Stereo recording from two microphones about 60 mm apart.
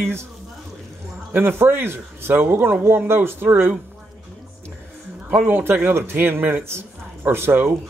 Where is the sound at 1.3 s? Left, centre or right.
Right.